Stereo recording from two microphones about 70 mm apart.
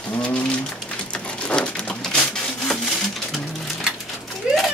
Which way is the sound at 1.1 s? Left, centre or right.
Centre.